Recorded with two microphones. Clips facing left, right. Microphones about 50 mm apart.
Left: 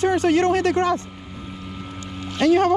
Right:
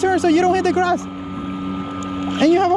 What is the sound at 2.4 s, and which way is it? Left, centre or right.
Speech, right.